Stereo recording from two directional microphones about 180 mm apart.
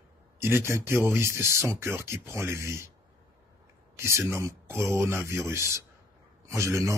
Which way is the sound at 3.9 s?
15° right (ahead or behind).